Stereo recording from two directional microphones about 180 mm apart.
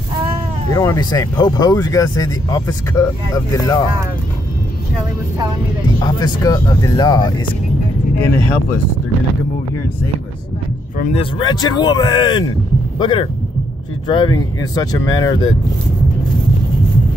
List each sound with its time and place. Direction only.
0.7 s speech: 20° left (ahead or behind)
5.9 s speech: 20° left (ahead or behind)
11.1 s speech: 25° left (ahead or behind)